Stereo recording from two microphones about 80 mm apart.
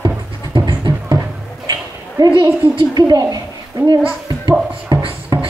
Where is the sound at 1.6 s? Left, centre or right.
Right.